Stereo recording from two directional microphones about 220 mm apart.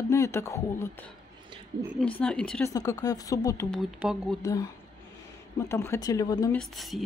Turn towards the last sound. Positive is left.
turn(degrees=0)  # may be behind; listen again after turning